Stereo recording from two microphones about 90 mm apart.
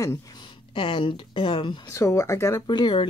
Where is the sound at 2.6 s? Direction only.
55° left (ahead or behind).